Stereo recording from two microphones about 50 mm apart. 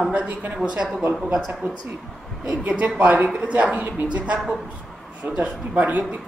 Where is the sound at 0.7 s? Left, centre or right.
Centre; by 4.3 s right.